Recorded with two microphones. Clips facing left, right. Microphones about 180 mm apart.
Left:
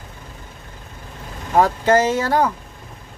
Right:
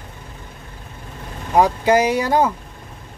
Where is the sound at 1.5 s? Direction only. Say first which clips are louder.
Even; 15° right (ahead or behind).